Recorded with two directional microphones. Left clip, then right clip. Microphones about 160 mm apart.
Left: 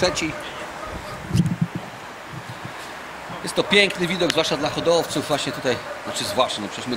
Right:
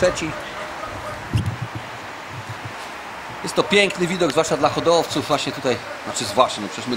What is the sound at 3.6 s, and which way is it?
A man's voice, 5° right (ahead or behind).